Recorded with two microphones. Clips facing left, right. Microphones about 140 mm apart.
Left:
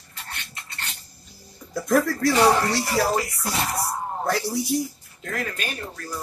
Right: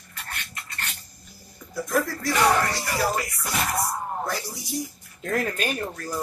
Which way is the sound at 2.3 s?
30° left (ahead or behind).